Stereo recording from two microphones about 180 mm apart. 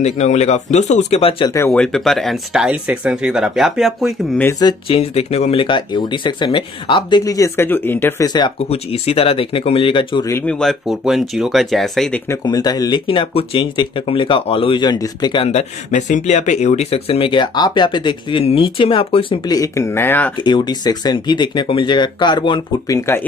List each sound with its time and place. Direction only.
0.0 s speech: 40° left (ahead or behind)
1.7 s speech: centre (ahead or behind)
4.4 s speech: 15° left (ahead or behind)
10.3 s speech: 5° left (ahead or behind)
12.3 s speech: 20° left (ahead or behind)
20.3 s speech: 25° left (ahead or behind)